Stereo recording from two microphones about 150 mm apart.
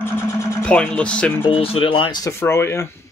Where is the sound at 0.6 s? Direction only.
10° left (ahead or behind).